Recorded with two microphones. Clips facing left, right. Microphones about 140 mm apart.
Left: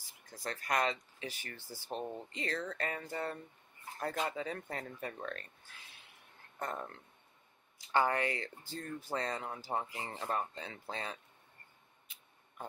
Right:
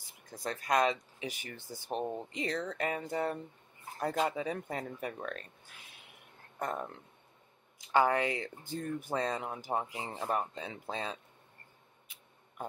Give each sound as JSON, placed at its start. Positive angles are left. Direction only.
{"t": 0.3, "sound": "speech", "side_deg": -20}
{"t": 6.6, "sound": "speech", "side_deg": -15}